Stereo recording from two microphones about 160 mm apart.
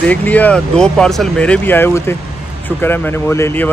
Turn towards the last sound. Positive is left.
turn(degrees=15)  # may be behind; listen again after turning